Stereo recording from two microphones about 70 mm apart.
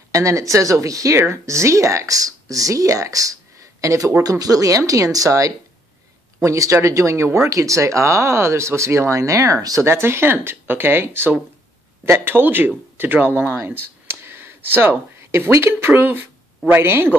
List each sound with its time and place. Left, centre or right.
0.1 s speech: right
4.2 s speech: right
9.8 s speech: right